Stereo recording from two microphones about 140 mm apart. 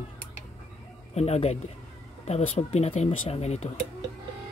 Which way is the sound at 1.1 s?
50° left (ahead or behind).